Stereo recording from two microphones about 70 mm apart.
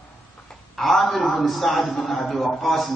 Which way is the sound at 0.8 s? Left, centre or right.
Centre.